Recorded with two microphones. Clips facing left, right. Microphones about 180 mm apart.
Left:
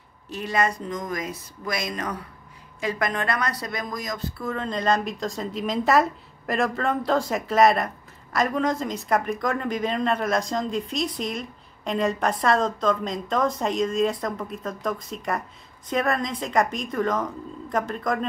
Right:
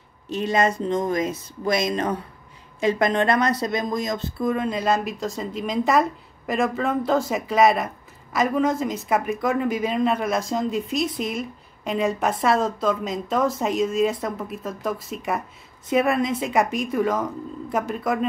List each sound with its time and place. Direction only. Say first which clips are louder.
0.3 s a woman's voice: right 4 dB; 20° right (ahead or behind)